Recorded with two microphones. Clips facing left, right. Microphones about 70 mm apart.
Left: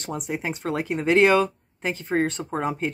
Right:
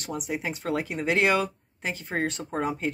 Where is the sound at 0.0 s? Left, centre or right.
Left.